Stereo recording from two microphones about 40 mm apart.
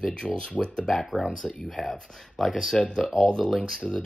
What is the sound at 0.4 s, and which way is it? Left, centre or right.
Speech, left.